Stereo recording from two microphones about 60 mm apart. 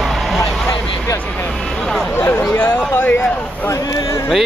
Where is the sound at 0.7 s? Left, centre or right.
Left.